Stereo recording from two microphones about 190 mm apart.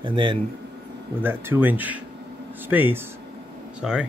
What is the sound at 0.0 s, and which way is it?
Speech, 25° right (ahead or behind).